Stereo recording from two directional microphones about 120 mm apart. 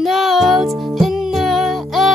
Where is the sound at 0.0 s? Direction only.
Centre (ahead or behind).